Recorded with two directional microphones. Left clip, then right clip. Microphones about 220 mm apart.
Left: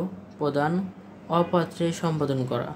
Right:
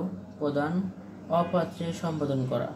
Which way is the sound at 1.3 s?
50° left (ahead or behind).